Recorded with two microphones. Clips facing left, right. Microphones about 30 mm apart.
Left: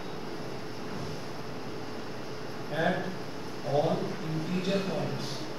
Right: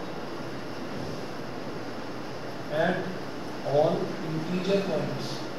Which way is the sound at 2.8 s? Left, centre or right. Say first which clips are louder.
Right 2 dB; centre.